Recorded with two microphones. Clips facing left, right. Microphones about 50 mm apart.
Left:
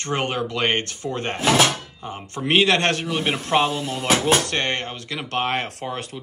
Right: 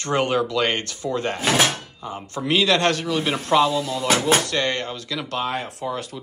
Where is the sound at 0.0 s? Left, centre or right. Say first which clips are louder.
Right 3 dB; left.